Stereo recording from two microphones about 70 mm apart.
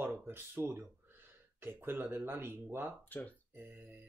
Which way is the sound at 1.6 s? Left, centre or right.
Right.